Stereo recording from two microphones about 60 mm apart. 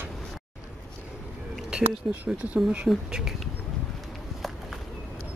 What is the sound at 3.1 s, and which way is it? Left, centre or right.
Speech, centre.